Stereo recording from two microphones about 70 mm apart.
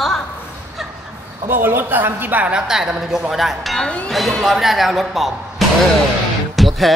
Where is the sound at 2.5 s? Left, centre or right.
Centre.